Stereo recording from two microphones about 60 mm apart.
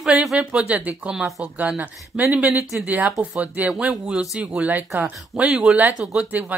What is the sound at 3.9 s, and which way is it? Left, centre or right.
Speech, centre.